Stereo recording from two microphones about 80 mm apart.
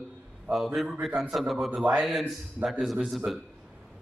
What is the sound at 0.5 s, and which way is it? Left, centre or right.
Speech, centre.